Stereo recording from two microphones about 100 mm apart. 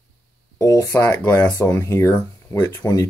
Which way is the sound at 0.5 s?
30° left (ahead or behind).